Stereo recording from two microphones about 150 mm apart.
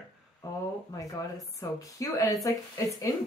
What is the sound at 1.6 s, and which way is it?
Speech, 25° left (ahead or behind).